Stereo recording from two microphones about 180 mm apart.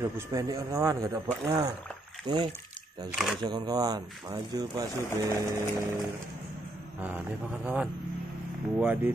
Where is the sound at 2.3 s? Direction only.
20° right (ahead or behind).